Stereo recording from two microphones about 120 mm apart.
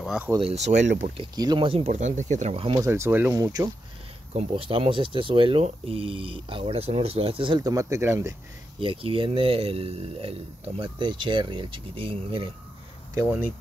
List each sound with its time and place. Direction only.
0.0 s speech: 5° right (ahead or behind)
0.4 s speech: 65° right (ahead or behind)
1.3 s speech: 35° right (ahead or behind)
1.9 s speech: 85° right
2.5 s speech: 50° right (ahead or behind)
2.8 s speech: 20° right (ahead or behind)
3.3 s speech: 30° right (ahead or behind)
4.3 s speech: 55° right (ahead or behind)
7.6 s speech: 25° right (ahead or behind)
8.7 s speech: 50° right (ahead or behind)